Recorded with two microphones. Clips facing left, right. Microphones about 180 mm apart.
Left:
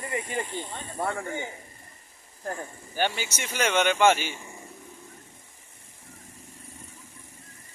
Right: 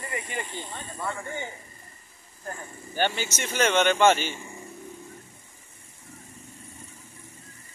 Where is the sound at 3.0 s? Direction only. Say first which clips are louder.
Right 1 dB; 10° left (ahead or behind).